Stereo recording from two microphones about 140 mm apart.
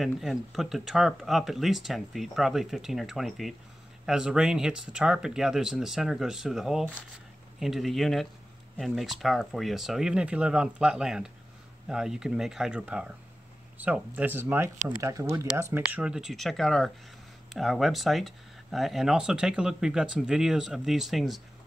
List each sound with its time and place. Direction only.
0.0 s speech: centre (ahead or behind); by 15.4 s 20° right (ahead or behind)
15.7 s speech: 10° right (ahead or behind)